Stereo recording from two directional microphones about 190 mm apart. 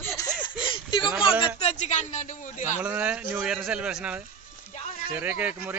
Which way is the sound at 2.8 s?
10° right (ahead or behind).